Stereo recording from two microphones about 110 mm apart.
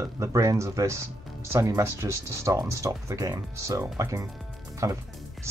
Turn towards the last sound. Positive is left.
turn(degrees=-30)  # may be behind; listen again after turning